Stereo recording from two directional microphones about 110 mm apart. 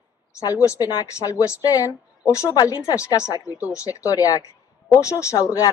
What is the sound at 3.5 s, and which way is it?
Speech, 15° right (ahead or behind).